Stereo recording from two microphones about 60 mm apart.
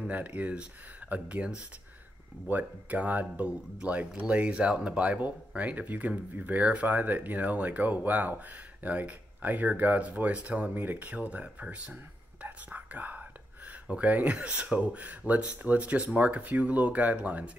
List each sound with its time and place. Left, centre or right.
0.1 s speech: right